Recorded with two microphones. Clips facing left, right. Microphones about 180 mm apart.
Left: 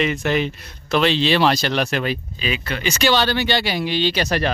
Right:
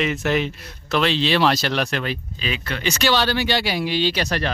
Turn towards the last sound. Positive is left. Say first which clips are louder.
# left 1 dB
turn(degrees=-5)  # may be behind; listen again after turning